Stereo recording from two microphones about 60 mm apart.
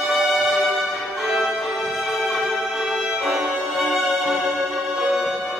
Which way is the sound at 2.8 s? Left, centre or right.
Centre.